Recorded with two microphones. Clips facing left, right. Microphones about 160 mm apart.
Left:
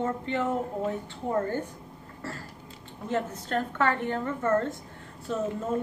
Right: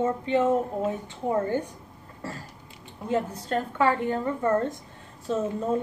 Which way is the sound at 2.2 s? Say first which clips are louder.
Right 1 dB; 15° right (ahead or behind).